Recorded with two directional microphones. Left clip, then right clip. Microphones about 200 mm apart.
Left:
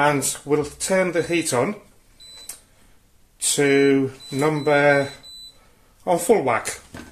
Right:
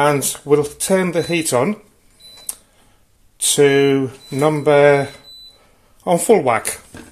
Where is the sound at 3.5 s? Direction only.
40° right (ahead or behind).